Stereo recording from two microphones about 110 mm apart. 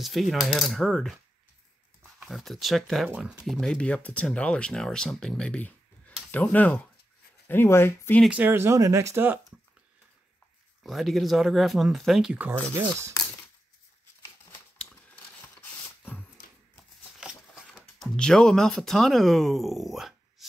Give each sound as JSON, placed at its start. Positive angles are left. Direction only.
{"t": 0.0, "sound": "speech", "side_deg": 0}
{"t": 2.2, "sound": "speech", "side_deg": 0}
{"t": 3.4, "sound": "speech", "side_deg": 5}
{"t": 8.3, "sound": "speech", "side_deg": -20}
{"t": 10.8, "sound": "speech", "side_deg": 0}
{"t": 17.2, "sound": "a sound", "side_deg": -5}
{"t": 17.9, "sound": "speech", "side_deg": 5}